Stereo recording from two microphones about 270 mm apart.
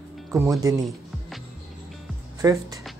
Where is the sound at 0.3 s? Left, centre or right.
Centre.